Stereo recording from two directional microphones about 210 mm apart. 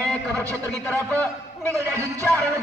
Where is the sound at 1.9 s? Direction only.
15° right (ahead or behind).